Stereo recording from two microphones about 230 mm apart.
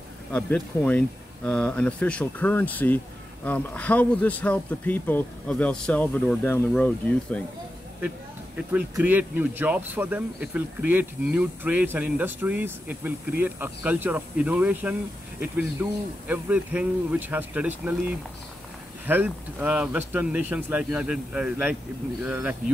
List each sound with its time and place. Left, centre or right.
0.3 s speech: centre
8.5 s speech: centre